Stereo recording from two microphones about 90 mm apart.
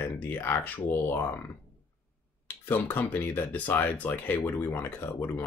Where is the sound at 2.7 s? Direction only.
25° left (ahead or behind).